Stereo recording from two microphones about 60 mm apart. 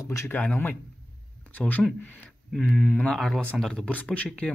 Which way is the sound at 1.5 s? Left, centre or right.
Left.